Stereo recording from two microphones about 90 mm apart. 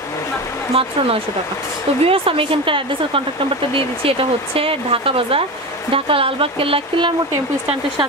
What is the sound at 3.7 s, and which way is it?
Speech, 90° right.